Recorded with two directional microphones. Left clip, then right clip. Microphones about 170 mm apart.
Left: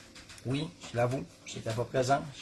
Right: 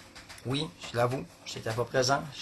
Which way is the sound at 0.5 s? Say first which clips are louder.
Right 2 dB; 10° left (ahead or behind).